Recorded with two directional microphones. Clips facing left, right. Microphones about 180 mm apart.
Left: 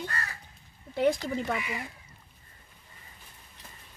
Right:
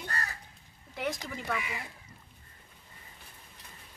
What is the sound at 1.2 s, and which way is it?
Speech, 30° left (ahead or behind).